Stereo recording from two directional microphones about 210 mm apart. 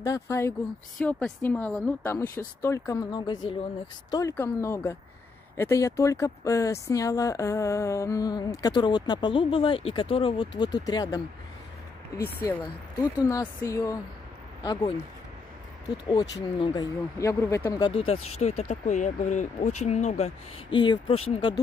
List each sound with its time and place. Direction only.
0.0 s speech: 15° left (ahead or behind)
12.4 s speech: 10° left (ahead or behind)
16.5 s speech: 20° left (ahead or behind)